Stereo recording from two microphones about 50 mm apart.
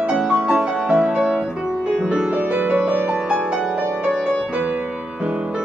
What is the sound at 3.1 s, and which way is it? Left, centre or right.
Music, right.